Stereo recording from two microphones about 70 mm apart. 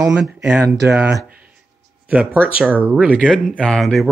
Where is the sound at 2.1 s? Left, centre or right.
Right.